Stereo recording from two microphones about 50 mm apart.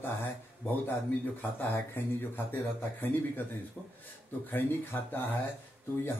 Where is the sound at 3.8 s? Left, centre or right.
Centre.